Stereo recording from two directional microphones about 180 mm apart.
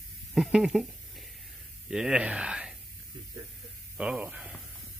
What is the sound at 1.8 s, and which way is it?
Speech, 5° right (ahead or behind).